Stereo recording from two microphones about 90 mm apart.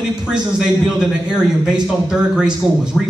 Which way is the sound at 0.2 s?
10° right (ahead or behind).